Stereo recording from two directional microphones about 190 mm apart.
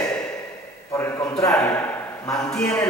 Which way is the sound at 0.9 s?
15° left (ahead or behind).